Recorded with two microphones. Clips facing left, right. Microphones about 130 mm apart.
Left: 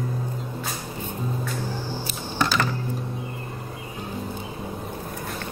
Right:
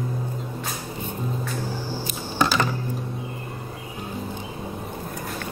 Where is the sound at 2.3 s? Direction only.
15° right (ahead or behind).